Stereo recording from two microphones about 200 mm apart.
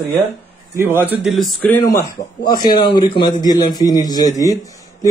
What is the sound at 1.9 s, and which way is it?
A man's voice, 15° left (ahead or behind).